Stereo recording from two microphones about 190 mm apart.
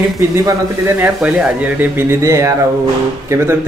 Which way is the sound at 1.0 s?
5° right (ahead or behind).